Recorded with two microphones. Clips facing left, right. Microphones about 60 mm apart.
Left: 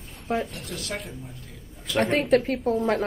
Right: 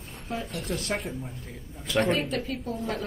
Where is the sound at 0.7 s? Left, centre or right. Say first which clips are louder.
Right 3 dB; right.